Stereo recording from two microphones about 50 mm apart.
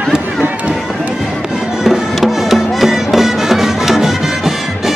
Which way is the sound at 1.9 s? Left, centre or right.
Centre.